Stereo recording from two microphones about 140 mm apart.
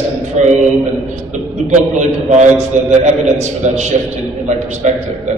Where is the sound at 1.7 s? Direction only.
55° right (ahead or behind).